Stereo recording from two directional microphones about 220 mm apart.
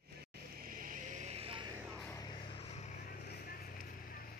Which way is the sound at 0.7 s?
35° right (ahead or behind).